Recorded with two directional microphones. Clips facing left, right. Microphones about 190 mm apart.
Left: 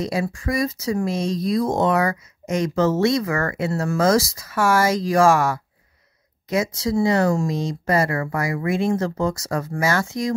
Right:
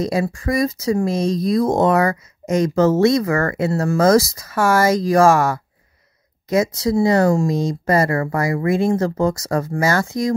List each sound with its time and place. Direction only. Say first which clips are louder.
0.0 s speech: right 4 dB; 40° right (ahead or behind)